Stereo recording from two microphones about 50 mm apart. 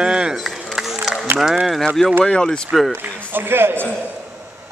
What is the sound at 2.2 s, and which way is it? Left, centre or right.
Speech, centre.